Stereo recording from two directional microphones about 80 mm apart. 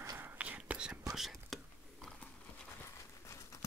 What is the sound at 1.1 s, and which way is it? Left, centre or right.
Whispering, centre.